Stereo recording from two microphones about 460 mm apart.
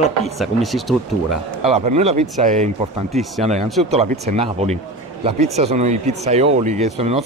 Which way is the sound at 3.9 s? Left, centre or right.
Centre.